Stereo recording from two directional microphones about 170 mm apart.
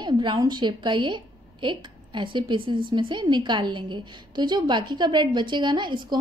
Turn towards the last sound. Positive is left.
turn(degrees=-25)  # may be behind; listen again after turning